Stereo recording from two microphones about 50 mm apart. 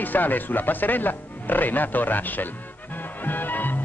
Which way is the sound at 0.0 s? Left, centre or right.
Left.